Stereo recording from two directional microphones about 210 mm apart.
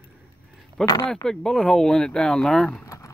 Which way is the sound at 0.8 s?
20° left (ahead or behind).